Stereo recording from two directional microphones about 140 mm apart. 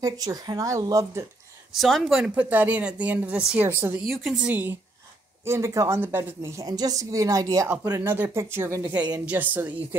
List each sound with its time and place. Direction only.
0.0 s a woman's voice: 25° right (ahead or behind)
1.7 s a woman's voice: centre (ahead or behind); by 7.6 s 25° right (ahead or behind)
7.6 s a woman's voice: 10° right (ahead or behind)